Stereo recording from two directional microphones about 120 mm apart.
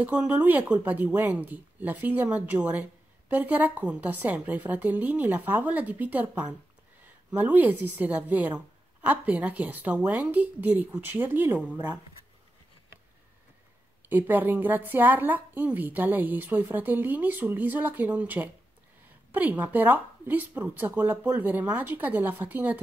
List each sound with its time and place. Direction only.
0.3 s speech: 15° right (ahead or behind)
14.0 s speech: 15° right (ahead or behind)